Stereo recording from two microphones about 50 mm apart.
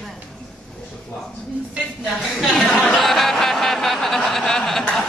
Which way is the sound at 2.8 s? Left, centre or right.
Centre.